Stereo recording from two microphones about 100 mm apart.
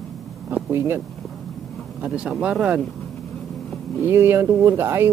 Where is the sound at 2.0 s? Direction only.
10° right (ahead or behind).